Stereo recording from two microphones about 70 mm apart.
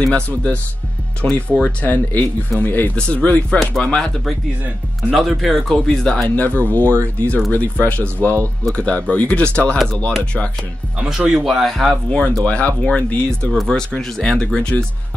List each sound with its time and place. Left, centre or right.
0.1 s speech: centre
3.0 s speech: centre
5.1 s speech: centre
6.2 s speech: left
11.0 s speech: centre
12.4 s speech: centre